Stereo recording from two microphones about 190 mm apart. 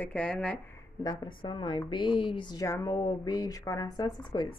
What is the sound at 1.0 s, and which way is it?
A woman's voice, 25° left (ahead or behind).